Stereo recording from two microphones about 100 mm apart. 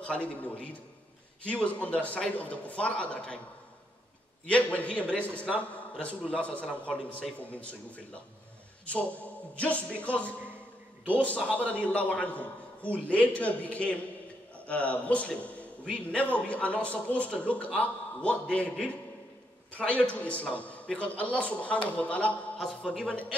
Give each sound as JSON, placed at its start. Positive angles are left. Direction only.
{"t": 0.0, "sound": "a man's voice", "side_deg": 10}
{"t": 4.5, "sound": "a man's voice", "side_deg": 15}